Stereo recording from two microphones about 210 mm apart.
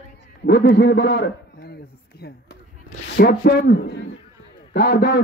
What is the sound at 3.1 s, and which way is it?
Speech, 50° left (ahead or behind).